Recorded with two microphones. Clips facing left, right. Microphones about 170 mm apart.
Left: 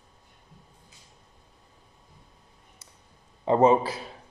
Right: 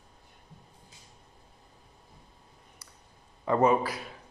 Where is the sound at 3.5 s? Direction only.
25° left (ahead or behind).